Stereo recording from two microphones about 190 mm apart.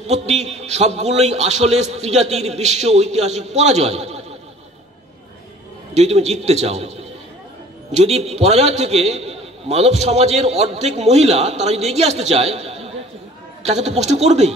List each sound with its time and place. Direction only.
0.0 s a man's voice: 35° right (ahead or behind)
5.9 s a man's voice: 35° right (ahead or behind)
7.9 s a man's voice: 35° right (ahead or behind)